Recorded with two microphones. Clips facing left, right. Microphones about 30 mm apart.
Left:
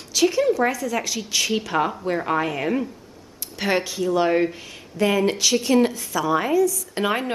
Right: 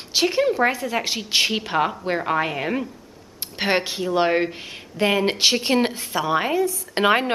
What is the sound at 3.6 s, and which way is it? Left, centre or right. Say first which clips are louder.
A woman's voice: right 1 dB; right.